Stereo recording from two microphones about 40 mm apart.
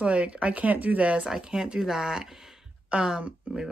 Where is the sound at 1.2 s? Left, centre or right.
Centre.